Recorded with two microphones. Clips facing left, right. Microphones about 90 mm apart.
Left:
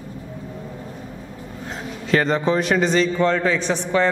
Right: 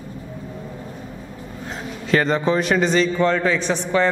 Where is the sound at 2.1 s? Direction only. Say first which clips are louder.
Even; 10° right (ahead or behind).